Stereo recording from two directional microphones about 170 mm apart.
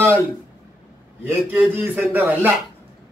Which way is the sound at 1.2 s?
15° right (ahead or behind).